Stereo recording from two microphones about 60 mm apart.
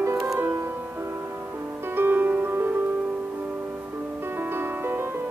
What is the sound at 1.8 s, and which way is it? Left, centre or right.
Music, right.